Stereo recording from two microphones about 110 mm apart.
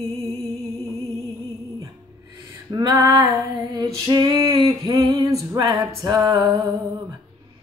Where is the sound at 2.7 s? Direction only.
35° right (ahead or behind).